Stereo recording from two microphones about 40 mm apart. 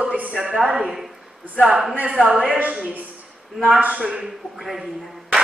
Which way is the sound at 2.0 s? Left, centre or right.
Right.